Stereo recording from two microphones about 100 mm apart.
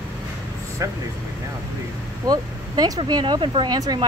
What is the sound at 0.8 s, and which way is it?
Speech, 30° right (ahead or behind).